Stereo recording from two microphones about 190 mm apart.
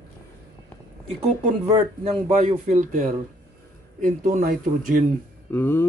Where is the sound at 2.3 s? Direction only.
35° right (ahead or behind).